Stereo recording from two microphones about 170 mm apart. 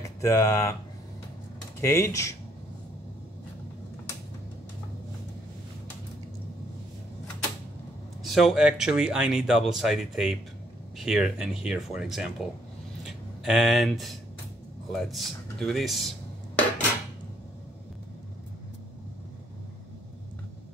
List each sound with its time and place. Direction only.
0.0 s speech: 15° left (ahead or behind)
1.8 s speech: 15° left (ahead or behind)
8.2 s speech: centre (ahead or behind)
13.0 s a sound: centre (ahead or behind)
14.9 s speech: centre (ahead or behind)